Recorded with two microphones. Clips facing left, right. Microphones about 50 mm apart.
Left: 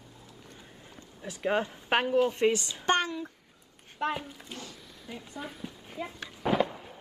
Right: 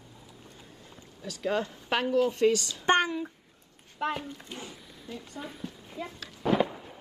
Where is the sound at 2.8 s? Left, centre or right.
Right.